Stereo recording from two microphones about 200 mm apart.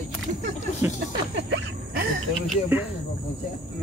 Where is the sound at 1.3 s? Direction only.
60° right (ahead or behind).